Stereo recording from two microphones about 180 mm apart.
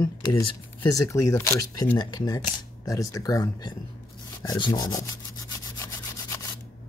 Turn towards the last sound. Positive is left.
turn(degrees=15)  # may be behind; listen again after turning